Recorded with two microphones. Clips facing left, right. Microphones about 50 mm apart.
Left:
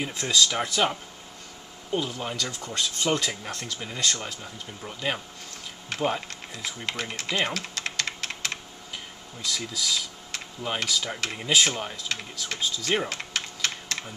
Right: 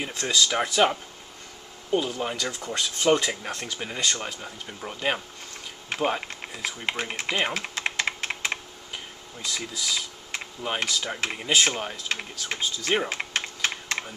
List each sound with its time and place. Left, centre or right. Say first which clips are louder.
0.0 s speech: left 1 dB; centre
6.9 s typing: right 2 dB; right
11.3 s speech: even; centre
13.1 s typing: right 3 dB; right